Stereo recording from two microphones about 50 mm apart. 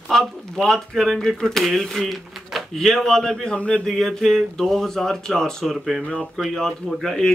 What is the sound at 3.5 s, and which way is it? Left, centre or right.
Speech, left.